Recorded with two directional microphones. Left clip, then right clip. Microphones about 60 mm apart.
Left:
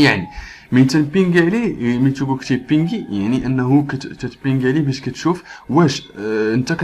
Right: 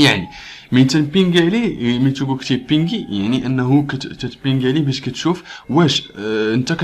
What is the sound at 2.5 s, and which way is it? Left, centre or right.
Speech, centre.